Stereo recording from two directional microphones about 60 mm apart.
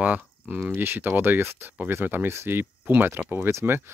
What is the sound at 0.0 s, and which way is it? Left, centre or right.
Speech, right.